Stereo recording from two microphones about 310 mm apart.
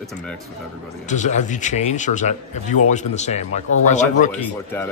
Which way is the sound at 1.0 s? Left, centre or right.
Left.